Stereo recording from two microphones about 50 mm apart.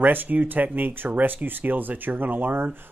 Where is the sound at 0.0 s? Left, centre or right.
Right.